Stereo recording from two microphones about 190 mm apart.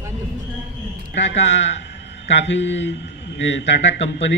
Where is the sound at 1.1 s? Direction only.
70° left (ahead or behind).